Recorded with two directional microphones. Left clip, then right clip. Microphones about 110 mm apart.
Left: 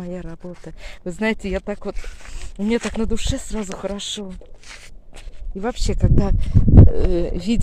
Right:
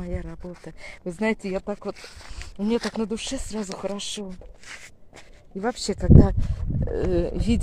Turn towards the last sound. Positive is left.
turn(degrees=5)  # may be behind; listen again after turning